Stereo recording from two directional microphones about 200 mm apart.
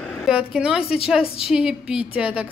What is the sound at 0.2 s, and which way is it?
A woman's voice, 5° right (ahead or behind).